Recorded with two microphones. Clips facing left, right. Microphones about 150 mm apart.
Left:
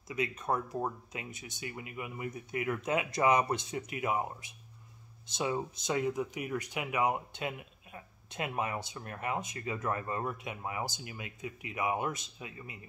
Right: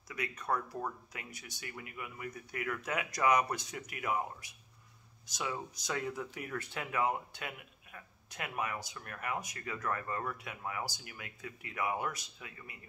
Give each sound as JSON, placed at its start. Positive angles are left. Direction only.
{"t": 0.1, "sound": "speech", "side_deg": 20}